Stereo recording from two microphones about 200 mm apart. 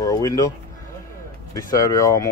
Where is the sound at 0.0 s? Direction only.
15° left (ahead or behind).